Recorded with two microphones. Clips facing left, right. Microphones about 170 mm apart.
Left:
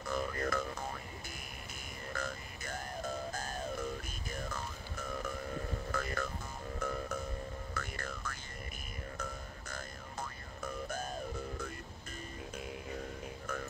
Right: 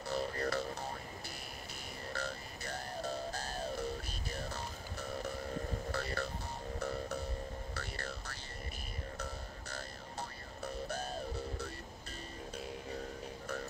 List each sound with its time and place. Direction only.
0.0 s music: 35° right (ahead or behind)
2.1 s music: 35° right (ahead or behind)
13.5 s music: 35° right (ahead or behind)